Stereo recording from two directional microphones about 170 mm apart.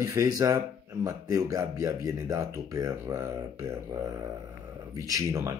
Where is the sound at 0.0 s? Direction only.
20° right (ahead or behind).